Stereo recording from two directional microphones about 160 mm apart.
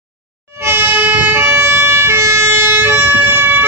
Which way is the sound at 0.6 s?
15° right (ahead or behind).